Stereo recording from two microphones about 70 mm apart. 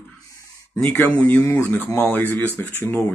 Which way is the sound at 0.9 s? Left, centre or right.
Left.